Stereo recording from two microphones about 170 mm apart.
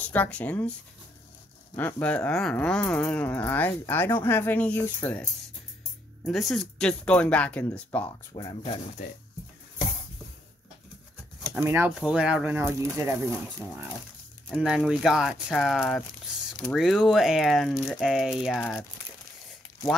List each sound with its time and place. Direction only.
0.1 s speech: 10° left (ahead or behind)
1.8 s speech: 10° left (ahead or behind)
6.2 s speech: centre (ahead or behind)
8.3 s speech: 25° left (ahead or behind)
11.5 s speech: 15° right (ahead or behind)
14.5 s speech: 5° right (ahead or behind)
18.6 s speech: 10° left (ahead or behind)